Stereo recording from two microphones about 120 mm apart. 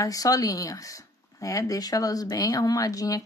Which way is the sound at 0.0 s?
30° left (ahead or behind).